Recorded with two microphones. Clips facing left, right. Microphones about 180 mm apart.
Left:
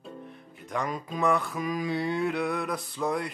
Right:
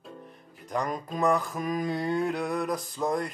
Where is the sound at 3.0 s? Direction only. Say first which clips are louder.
Even; 20° right (ahead or behind).